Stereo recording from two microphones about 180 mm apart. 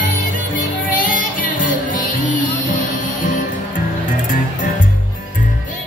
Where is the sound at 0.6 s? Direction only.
50° left (ahead or behind).